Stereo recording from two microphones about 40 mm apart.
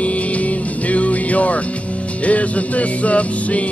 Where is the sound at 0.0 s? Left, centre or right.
Left.